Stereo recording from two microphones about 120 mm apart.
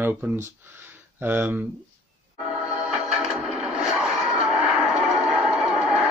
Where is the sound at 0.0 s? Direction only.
20° right (ahead or behind).